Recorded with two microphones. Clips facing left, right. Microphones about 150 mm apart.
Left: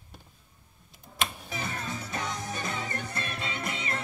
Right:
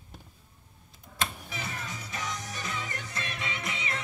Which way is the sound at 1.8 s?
55° left (ahead or behind).